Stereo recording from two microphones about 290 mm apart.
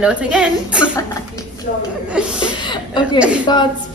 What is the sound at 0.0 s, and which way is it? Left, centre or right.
Speech, centre.